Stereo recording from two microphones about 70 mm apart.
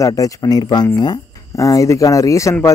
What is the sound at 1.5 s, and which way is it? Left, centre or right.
Speech, left.